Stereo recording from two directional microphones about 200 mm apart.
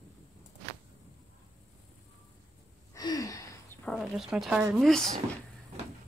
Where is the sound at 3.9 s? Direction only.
Centre (ahead or behind).